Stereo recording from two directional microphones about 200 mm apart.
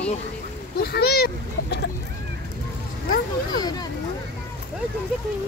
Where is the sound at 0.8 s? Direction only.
50° left (ahead or behind).